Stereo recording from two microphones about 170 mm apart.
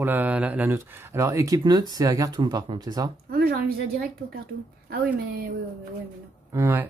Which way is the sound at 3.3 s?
65° right (ahead or behind).